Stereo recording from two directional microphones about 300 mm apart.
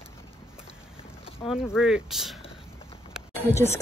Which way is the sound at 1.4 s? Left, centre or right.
Centre.